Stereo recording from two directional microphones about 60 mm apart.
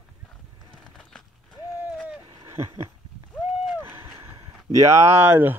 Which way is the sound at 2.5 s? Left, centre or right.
Right.